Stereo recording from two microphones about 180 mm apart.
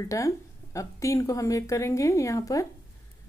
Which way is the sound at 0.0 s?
15° left (ahead or behind).